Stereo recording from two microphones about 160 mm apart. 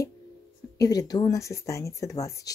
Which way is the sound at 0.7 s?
20° left (ahead or behind).